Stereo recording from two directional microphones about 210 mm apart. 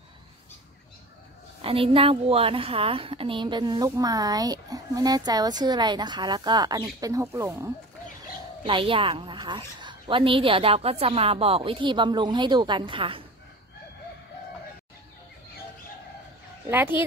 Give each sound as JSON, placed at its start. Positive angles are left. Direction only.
{"t": 1.6, "sound": "a woman's voice", "side_deg": -25}
{"t": 8.6, "sound": "a woman's voice", "side_deg": -25}
{"t": 16.6, "sound": "speech", "side_deg": -10}